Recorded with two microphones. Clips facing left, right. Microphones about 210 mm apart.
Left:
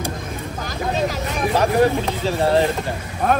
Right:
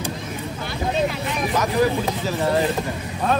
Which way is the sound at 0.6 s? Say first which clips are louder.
Even; 40° left (ahead or behind).